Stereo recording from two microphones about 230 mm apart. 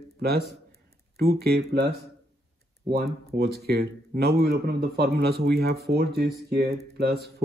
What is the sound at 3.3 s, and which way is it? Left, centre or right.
Speech, right.